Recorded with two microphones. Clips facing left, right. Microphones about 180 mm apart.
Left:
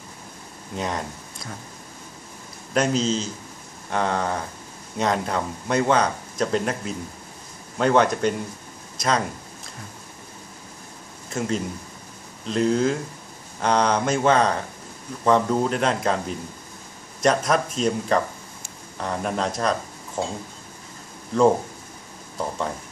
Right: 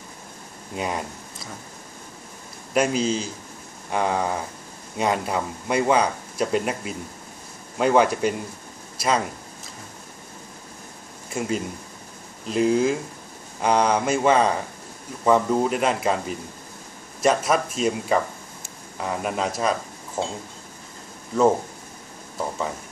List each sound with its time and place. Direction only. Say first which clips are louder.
0.7 s speech: even; 10° right (ahead or behind)
2.7 s speech: even; 10° right (ahead or behind)
11.2 s speech: even; 10° right (ahead or behind)